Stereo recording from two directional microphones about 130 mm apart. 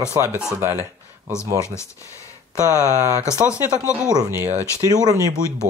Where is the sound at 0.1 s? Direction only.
20° right (ahead or behind).